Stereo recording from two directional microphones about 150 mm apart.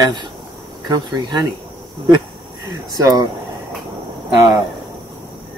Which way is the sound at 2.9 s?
25° right (ahead or behind).